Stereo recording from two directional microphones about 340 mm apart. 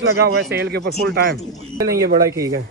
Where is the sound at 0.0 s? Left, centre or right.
Right.